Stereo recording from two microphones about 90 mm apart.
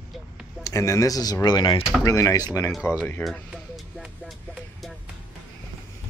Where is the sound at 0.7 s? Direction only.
35° left (ahead or behind); by 1.7 s 55° left (ahead or behind).